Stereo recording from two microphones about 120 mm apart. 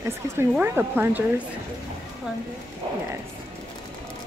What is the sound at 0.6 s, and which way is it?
Speech, 15° right (ahead or behind).